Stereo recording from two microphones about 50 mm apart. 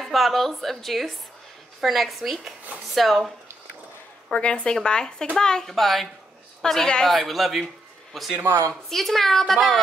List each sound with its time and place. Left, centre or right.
0.0 s a woman's voice: centre
4.3 s a woman's voice: left
7.1 s a woman's voice: centre
8.5 s a woman's voice: right
8.8 s a woman's voice: centre